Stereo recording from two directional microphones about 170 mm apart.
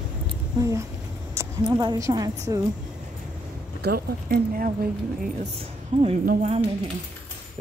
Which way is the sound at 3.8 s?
65° right (ahead or behind).